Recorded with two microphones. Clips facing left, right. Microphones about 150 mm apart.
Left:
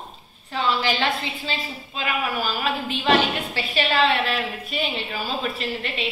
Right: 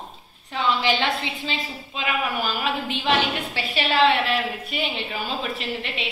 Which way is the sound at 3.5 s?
10° right (ahead or behind).